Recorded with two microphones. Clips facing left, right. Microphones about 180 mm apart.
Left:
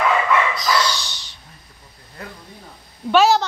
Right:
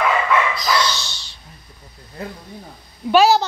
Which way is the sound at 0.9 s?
15° left (ahead or behind).